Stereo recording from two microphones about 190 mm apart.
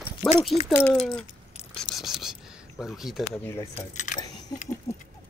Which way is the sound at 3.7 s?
40° left (ahead or behind).